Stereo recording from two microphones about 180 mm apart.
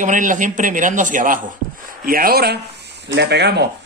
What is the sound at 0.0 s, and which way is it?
A man's voice, 45° right (ahead or behind).